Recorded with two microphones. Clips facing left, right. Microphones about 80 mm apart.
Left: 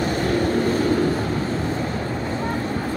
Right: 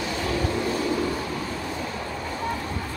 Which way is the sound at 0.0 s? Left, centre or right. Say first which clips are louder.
Left 6 dB; left.